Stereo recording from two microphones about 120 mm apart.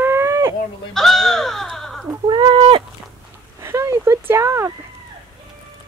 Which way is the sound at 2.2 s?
40° right (ahead or behind).